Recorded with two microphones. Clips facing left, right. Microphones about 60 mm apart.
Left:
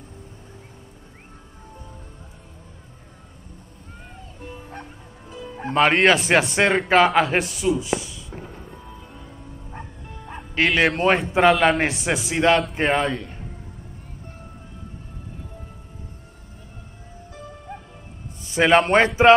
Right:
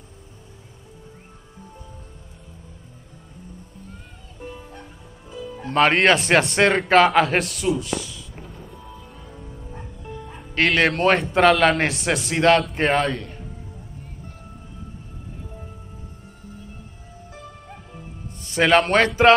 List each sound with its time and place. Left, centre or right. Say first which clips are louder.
4.4 s music: right 3 dB; centre
5.7 s a man's voice: even; centre
7.8 s speech: left 2 dB; centre
8.6 s music: even; centre
10.5 s a man's voice: even; centre
18.7 s speech: left 1 dB; centre